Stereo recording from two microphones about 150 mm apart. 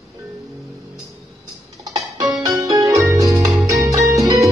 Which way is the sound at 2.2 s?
Centre (ahead or behind).